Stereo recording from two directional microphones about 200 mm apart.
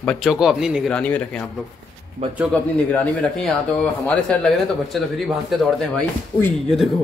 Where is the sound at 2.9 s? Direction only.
5° left (ahead or behind).